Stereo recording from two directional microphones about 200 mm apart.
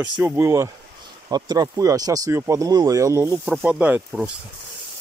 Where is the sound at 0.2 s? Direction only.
15° right (ahead or behind).